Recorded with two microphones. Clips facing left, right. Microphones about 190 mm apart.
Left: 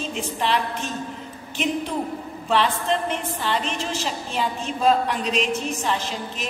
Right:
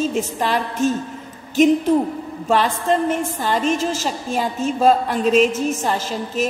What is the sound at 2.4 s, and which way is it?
A woman's voice, 45° right (ahead or behind).